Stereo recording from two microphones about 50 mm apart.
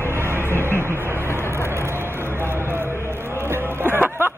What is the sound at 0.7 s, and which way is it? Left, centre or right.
Vehicle, right.